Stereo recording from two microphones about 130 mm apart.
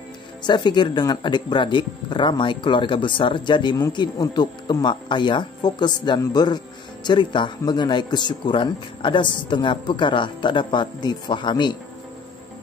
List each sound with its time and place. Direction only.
0.4 s speech: 35° left (ahead or behind)